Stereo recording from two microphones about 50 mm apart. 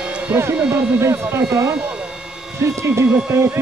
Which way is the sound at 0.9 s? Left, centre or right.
Right.